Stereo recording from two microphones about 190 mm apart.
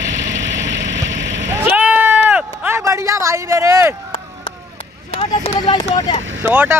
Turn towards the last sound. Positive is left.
turn(degrees=-10)  # may be behind; listen again after turning